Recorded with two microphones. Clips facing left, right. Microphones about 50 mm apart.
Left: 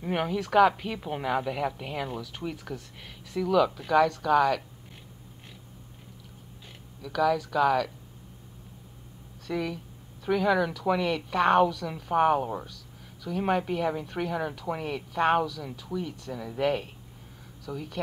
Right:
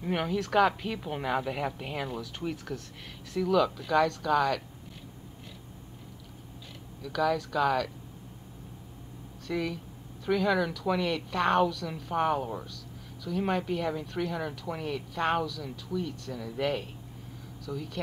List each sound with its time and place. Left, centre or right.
0.0 s a woman's voice: centre
7.0 s a woman's voice: centre
9.5 s a woman's voice: centre